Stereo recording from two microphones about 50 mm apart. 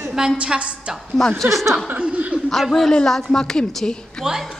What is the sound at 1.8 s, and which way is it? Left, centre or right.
Chuckle, right.